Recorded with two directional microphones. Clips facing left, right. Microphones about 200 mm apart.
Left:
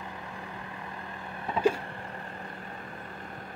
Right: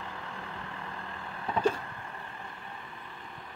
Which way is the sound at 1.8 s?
35° left (ahead or behind).